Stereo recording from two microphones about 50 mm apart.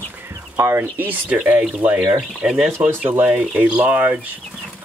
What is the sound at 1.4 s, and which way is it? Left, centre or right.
Speech, right.